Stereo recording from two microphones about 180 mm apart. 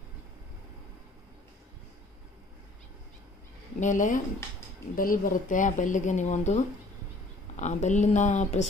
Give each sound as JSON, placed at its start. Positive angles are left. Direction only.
{"t": 3.8, "sound": "a woman's voice", "side_deg": 45}